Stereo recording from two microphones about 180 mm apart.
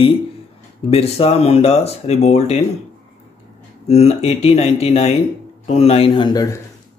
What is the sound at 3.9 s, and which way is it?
A man's voice, 35° left (ahead or behind).